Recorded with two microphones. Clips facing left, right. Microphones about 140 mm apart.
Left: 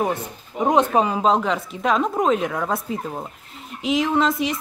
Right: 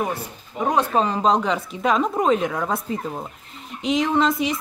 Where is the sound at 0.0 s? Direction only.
20° left (ahead or behind).